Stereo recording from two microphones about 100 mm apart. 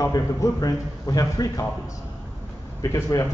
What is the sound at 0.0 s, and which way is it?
A man's voice, 35° left (ahead or behind).